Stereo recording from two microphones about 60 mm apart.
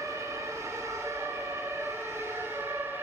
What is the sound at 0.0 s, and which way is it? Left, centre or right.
Siren, right.